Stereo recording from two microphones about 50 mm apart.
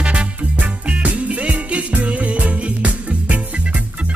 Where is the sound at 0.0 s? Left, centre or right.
Right.